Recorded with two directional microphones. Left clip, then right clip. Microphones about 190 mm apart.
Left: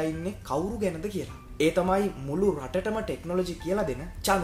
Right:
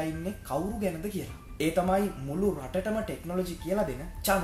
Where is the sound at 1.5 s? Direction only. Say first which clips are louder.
Left 3 dB; 25° left (ahead or behind).